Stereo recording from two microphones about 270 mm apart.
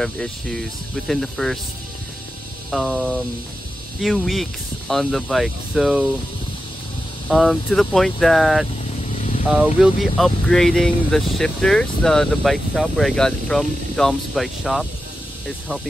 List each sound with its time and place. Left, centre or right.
0.0 s speech: centre
2.7 s speech: centre
7.2 s speech: centre
9.1 s vehicle: left
9.5 s speech: centre